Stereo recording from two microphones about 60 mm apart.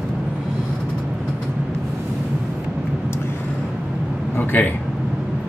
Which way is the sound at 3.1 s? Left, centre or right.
Left.